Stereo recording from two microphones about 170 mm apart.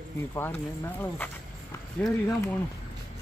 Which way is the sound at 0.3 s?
15° left (ahead or behind).